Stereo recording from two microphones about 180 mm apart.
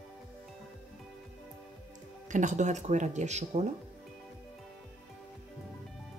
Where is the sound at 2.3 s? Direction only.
45° right (ahead or behind).